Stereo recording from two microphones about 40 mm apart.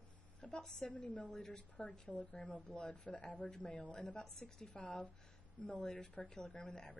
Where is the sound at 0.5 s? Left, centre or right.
Centre.